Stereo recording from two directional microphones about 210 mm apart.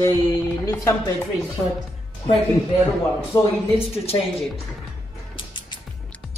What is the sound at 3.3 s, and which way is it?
A woman's voice, 20° left (ahead or behind).